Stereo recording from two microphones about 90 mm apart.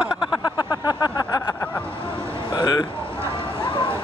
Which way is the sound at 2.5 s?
50° left (ahead or behind).